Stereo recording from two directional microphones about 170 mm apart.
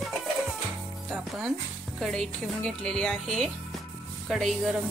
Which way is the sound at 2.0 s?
Centre (ahead or behind).